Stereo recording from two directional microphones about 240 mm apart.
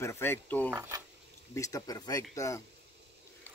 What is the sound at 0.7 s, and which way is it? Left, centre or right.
Speech, centre.